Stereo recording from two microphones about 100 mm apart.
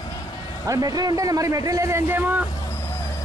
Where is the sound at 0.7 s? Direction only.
40° right (ahead or behind); by 2.4 s 20° right (ahead or behind).